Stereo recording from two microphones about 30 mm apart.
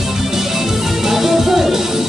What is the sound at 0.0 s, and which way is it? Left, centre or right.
Music, centre.